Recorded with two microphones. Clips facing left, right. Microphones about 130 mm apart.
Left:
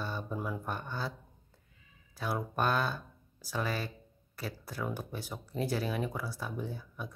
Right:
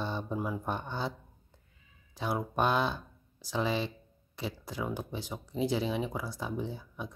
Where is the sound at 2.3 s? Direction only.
15° right (ahead or behind).